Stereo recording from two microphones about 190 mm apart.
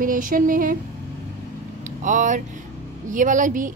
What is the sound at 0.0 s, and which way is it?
Speech, 45° right (ahead or behind).